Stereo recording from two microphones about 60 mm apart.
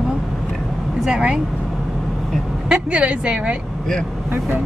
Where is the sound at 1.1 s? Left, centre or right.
Centre.